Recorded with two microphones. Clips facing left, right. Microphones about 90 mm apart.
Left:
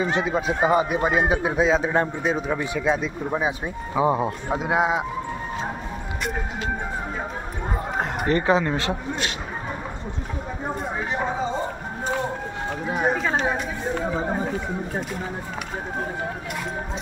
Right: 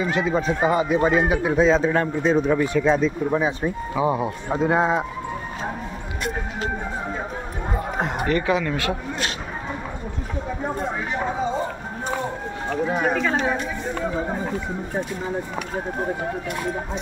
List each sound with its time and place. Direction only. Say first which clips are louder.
0.0 s a woman's voice: even; 25° left (ahead or behind)
0.3 s a man's voice: right 2 dB; 5° left (ahead or behind)
0.6 s a man's voice: left 1 dB; 20° left (ahead or behind)
2.3 s a man's voice: right 6 dB; 5° left (ahead or behind)
3.9 s a woman's voice: left 2 dB; 30° left (ahead or behind)
4.5 s a man's voice: right 3 dB; 10° left (ahead or behind)
8.3 s speech: left 3 dB; 35° left (ahead or behind)
13.1 s a woman's voice: right 1 dB; 20° left (ahead or behind)